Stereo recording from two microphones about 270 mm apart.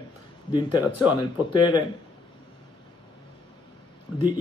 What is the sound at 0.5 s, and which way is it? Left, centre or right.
Speech, centre.